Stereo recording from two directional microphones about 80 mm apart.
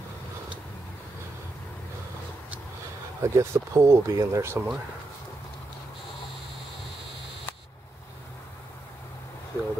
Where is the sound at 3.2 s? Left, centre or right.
Right.